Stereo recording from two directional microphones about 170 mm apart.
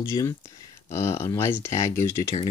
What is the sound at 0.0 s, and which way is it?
Speech, 20° left (ahead or behind).